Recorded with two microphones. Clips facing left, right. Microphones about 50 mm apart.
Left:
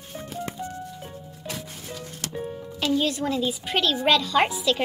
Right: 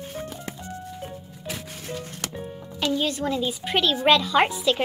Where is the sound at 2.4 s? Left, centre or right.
Centre.